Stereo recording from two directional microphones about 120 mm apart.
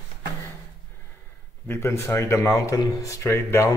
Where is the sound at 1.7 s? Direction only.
20° left (ahead or behind).